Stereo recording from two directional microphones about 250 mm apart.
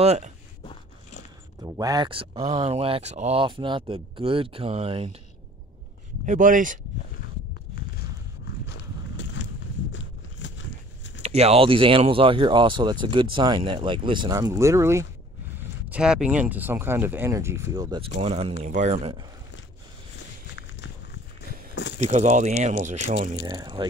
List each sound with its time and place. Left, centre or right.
0.0 s speech: right
1.6 s speech: centre
6.2 s speech: right
8.6 s a sound: left
11.2 s speech: right
20.5 s walk: left
22.0 s speech: right
23.4 s speech: centre